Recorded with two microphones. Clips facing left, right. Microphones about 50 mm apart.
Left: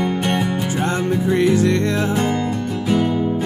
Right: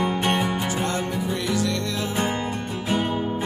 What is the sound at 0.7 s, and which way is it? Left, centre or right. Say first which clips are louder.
Music: left 5 dB; left.